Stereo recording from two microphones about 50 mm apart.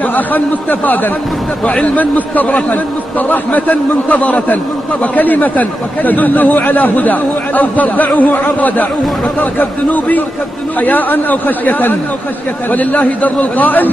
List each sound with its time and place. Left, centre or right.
0.1 s speech: left